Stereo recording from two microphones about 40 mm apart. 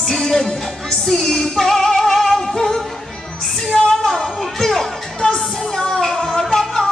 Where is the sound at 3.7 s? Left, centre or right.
Centre.